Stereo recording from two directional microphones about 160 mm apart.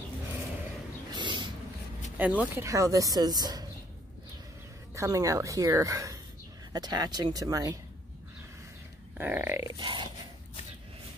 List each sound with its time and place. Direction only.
1.1 s a sound: 30° right (ahead or behind)
2.1 s speech: 10° right (ahead or behind)
4.9 s speech: 20° right (ahead or behind)
9.2 s grunt: 10° right (ahead or behind)
9.8 s grunt: 30° right (ahead or behind)